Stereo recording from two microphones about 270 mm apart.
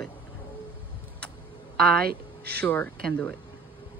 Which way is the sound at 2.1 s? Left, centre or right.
Right.